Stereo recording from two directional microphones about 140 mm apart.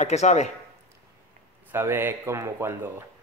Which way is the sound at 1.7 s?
15° right (ahead or behind).